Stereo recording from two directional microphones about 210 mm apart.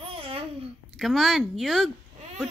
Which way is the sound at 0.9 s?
Centre (ahead or behind).